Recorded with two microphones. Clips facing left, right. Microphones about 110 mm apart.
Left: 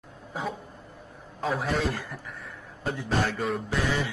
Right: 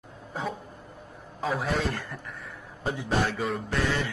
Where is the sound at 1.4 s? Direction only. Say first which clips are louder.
Left 1 dB; centre (ahead or behind).